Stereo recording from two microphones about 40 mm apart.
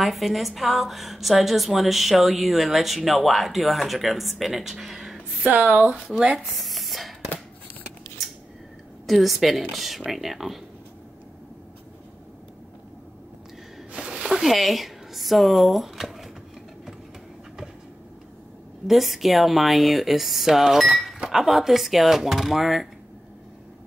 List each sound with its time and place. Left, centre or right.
0.0 s a woman's voice: centre
5.4 s speech: right
6.3 s a sound: centre
9.0 s a woman's voice: centre
13.9 s a sound: right
14.4 s speech: centre
18.9 s a woman's voice: centre